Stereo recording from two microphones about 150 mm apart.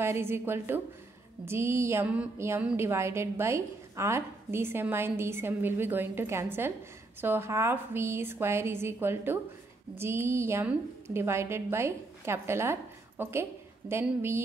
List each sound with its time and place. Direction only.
0.0 s a woman's voice: 15° right (ahead or behind)